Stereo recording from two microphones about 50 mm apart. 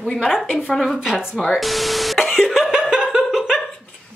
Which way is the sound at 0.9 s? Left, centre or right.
Centre.